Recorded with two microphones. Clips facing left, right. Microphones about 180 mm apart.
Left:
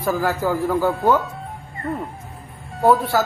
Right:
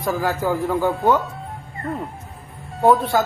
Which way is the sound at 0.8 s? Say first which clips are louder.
Even; 5° left (ahead or behind).